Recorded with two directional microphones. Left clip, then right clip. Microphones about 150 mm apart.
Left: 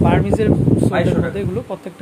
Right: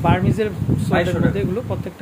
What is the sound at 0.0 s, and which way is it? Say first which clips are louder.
Speech: left 3 dB; 15° left (ahead or behind).